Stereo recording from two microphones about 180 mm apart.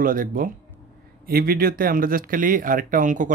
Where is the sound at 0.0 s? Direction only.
50° right (ahead or behind).